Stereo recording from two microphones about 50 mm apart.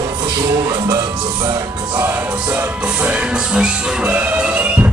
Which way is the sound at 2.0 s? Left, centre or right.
Right.